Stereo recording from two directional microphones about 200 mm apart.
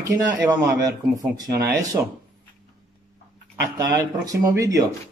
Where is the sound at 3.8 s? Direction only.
15° right (ahead or behind).